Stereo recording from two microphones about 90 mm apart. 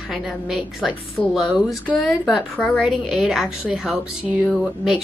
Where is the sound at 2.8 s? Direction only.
5° right (ahead or behind).